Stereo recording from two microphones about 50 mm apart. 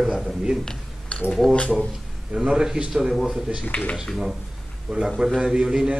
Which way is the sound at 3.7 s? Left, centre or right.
Left.